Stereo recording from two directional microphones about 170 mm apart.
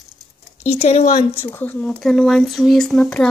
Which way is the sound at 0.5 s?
40° left (ahead or behind).